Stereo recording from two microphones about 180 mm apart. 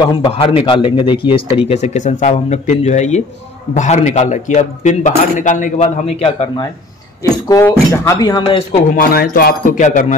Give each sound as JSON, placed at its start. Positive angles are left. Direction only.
{"t": 0.0, "sound": "speech", "side_deg": 25}
{"t": 7.4, "sound": "speech", "side_deg": 15}
{"t": 8.9, "sound": "speech", "side_deg": 55}